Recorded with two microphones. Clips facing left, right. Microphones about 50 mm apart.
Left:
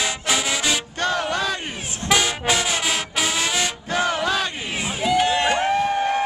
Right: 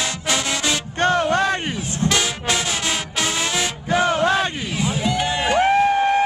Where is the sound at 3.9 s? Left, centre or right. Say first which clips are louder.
Right 5 dB; right.